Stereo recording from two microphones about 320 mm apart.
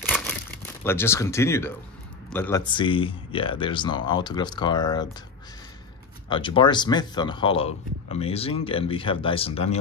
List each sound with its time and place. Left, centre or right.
0.8 s speech: centre
6.2 s speech: centre